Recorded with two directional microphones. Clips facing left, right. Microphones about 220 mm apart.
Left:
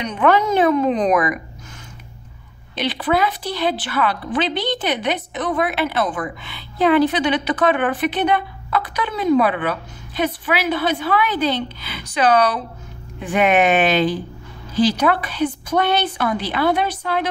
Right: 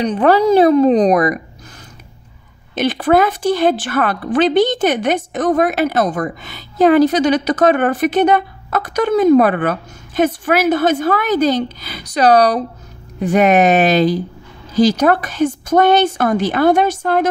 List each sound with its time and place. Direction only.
0.0 s a woman's voice: 35° right (ahead or behind)
2.7 s a woman's voice: 45° right (ahead or behind)